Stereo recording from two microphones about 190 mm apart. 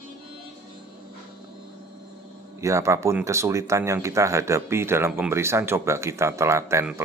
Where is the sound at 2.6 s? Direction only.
15° right (ahead or behind).